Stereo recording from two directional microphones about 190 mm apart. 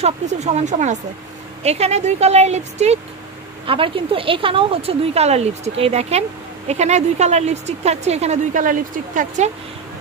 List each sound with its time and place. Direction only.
0.0 s speech: 35° right (ahead or behind)